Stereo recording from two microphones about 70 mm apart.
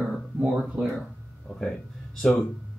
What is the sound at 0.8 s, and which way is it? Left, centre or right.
Speech, right.